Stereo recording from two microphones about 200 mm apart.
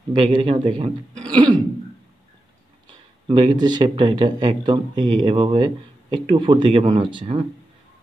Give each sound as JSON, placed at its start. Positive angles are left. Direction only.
{"t": 0.1, "sound": "speech", "side_deg": -25}
{"t": 3.3, "sound": "speech", "side_deg": -25}